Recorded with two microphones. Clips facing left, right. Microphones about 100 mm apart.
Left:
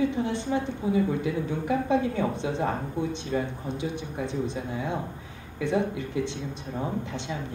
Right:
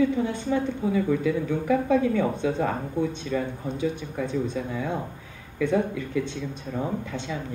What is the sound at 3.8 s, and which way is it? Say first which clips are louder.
A woman's voice: right 5 dB; 45° right (ahead or behind).